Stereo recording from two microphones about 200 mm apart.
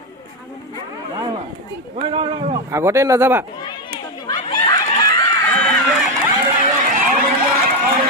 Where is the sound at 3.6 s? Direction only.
20° left (ahead or behind).